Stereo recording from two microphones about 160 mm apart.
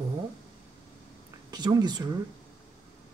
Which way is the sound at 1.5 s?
25° right (ahead or behind).